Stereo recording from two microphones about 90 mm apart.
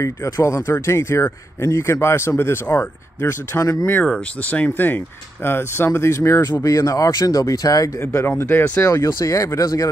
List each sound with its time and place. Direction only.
0.0 s speech: 35° left (ahead or behind)
4.0 s speech: 15° left (ahead or behind); by 8.0 s 40° left (ahead or behind)
8.0 s speech: 30° left (ahead or behind)
8.8 s speech: 40° left (ahead or behind)